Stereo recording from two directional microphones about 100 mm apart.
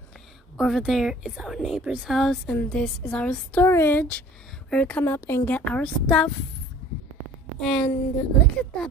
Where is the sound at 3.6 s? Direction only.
25° left (ahead or behind).